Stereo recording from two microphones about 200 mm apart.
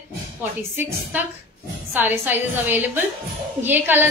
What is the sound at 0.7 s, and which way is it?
A woman's voice, 10° right (ahead or behind).